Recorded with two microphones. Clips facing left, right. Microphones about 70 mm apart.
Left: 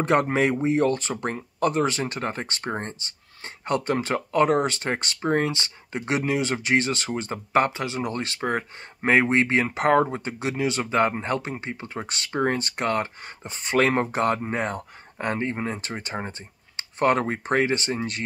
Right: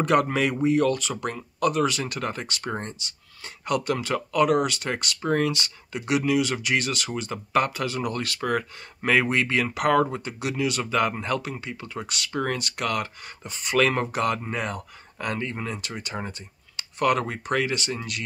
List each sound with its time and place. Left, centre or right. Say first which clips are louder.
0.0 s speech: left 1 dB; left